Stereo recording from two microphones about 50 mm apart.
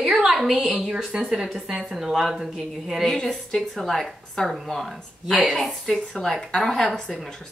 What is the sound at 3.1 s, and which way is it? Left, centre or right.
A woman's voice, centre.